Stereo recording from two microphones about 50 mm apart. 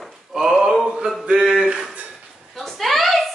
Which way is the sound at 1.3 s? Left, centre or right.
Centre.